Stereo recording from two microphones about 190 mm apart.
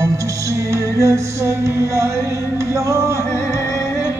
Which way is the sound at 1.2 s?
15° right (ahead or behind).